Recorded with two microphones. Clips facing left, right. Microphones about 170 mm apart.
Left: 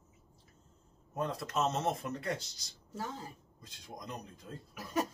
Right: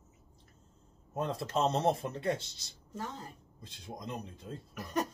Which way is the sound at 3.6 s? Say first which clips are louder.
Right 4 dB; 30° right (ahead or behind).